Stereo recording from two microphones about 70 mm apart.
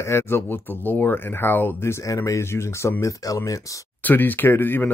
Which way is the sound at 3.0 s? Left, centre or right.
Left.